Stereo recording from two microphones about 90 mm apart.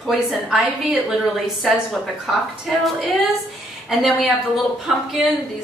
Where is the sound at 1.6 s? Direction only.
Centre (ahead or behind).